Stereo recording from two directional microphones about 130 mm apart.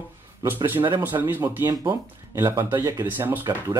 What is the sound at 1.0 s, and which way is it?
Speech, 15° right (ahead or behind).